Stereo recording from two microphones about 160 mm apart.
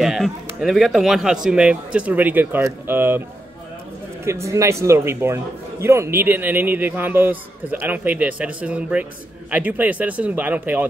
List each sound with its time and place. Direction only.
0.0 s speech: 5° right (ahead or behind)
4.2 s a man's voice: 15° right (ahead or behind)